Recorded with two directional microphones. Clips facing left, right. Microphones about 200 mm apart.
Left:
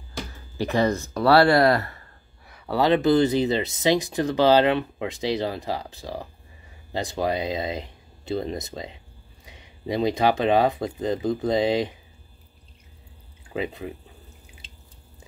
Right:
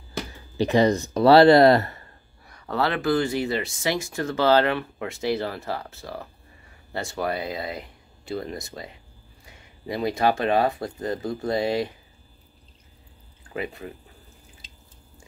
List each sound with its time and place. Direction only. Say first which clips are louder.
0.6 s speech: right 3 dB; 15° right (ahead or behind)
2.4 s speech: left 3 dB; 5° left (ahead or behind)
13.5 s speech: left 3 dB; 20° left (ahead or behind)